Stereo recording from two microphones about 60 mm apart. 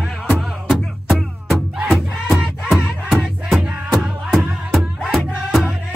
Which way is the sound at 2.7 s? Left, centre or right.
Centre.